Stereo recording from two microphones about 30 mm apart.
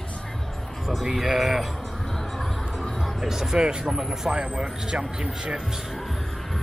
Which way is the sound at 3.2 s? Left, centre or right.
Centre.